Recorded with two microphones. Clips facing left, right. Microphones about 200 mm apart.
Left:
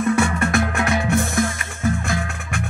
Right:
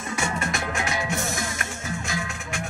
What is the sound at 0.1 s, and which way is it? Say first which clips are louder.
Music: left 5 dB; 60° left (ahead or behind).